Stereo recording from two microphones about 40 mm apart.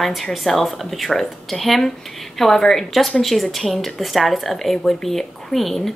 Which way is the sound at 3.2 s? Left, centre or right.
Centre.